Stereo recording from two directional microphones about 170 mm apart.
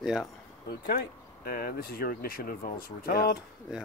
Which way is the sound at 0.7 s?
60° left (ahead or behind).